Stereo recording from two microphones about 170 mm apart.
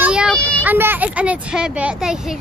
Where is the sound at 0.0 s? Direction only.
5° right (ahead or behind).